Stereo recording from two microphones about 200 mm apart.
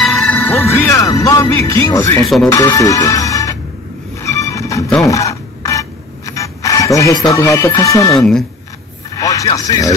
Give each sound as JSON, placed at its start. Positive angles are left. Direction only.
{"t": 0.0, "sound": "speech", "side_deg": 5}
{"t": 2.2, "sound": "speech", "side_deg": 0}
{"t": 2.5, "sound": "music", "side_deg": 15}
{"t": 4.2, "sound": "train", "side_deg": 15}
{"t": 5.0, "sound": "a sound", "side_deg": 15}
{"t": 9.1, "sound": "speech", "side_deg": 15}